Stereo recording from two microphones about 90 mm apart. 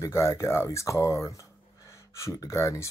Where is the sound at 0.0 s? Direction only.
35° left (ahead or behind).